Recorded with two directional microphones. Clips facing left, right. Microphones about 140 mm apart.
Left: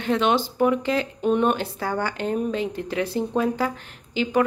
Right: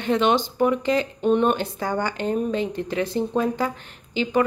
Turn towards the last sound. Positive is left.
turn(degrees=5)  # may be behind; listen again after turning